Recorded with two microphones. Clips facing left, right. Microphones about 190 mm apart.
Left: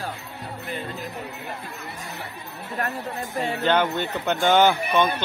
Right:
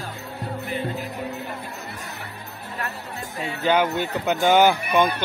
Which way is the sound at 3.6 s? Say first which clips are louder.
Right 2 dB; 10° right (ahead or behind).